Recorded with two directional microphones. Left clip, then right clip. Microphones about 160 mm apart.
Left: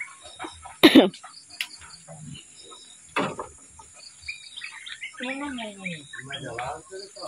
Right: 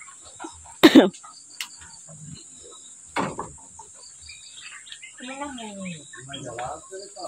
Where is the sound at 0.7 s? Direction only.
15° right (ahead or behind).